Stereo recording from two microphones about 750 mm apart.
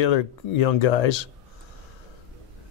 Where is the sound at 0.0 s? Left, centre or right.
Left.